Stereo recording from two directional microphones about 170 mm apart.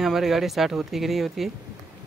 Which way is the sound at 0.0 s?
Centre (ahead or behind).